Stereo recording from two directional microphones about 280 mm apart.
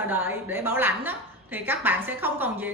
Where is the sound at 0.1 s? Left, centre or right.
Centre.